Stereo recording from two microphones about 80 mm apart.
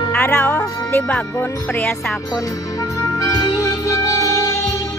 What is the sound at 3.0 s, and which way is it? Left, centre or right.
Music, left.